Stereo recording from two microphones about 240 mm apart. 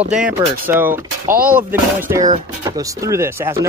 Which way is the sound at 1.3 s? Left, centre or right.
Right.